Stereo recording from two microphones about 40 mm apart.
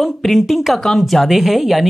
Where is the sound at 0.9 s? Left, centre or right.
Centre.